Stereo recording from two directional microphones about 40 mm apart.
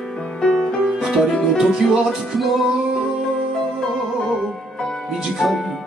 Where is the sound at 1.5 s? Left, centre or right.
Centre.